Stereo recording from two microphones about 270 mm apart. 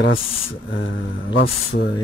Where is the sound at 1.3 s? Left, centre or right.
Left.